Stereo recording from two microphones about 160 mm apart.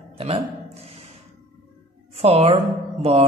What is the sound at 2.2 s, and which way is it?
Speech, 40° right (ahead or behind).